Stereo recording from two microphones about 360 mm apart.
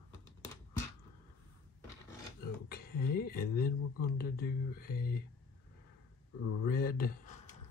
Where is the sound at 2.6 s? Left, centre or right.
Left.